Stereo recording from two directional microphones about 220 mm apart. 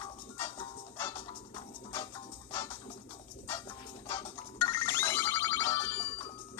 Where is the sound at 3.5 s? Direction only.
20° left (ahead or behind).